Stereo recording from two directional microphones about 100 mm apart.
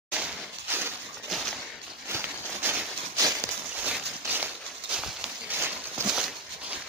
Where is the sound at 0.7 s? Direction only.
20° right (ahead or behind).